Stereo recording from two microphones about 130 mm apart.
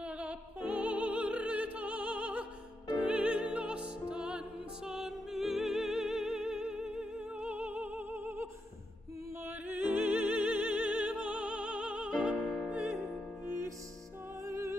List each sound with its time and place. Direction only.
0.0 s music: 10° right (ahead or behind)